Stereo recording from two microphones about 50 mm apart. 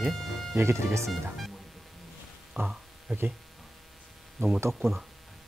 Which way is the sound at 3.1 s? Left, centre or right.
Right.